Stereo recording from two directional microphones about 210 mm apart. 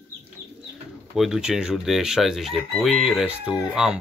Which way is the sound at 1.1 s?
Centre (ahead or behind).